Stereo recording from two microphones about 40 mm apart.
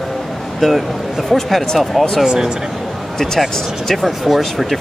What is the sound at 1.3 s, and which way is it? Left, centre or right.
Speech, centre.